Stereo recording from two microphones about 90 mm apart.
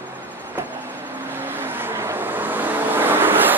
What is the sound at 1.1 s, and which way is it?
Vehicle, 25° right (ahead or behind).